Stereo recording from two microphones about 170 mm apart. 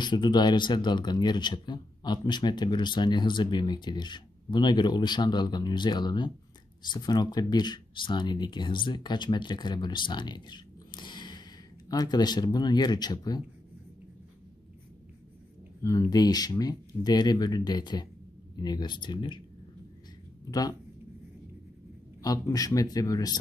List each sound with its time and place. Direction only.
0.0 s speech: 25° left (ahead or behind)
15.8 s speech: 20° left (ahead or behind)
22.2 s speech: 20° left (ahead or behind)